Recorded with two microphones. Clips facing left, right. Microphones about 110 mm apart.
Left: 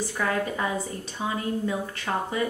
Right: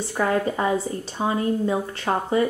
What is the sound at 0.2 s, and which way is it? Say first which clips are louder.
Speech: right 6 dB; 35° right (ahead or behind).